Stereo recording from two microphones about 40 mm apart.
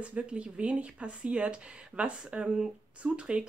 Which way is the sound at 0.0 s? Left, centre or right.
Right.